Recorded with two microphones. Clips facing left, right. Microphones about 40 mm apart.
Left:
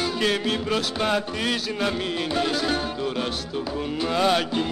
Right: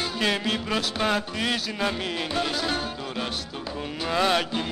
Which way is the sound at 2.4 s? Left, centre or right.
Centre.